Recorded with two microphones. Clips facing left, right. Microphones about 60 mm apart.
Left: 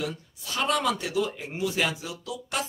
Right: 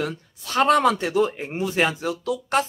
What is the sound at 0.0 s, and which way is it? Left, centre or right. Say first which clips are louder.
Speech: right 4 dB; right.